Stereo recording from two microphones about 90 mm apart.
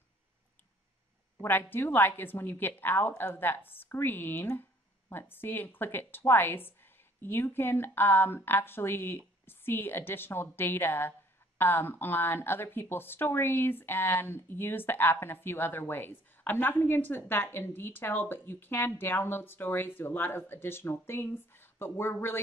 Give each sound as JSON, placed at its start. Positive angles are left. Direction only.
{"t": 1.4, "sound": "a woman's voice", "side_deg": 25}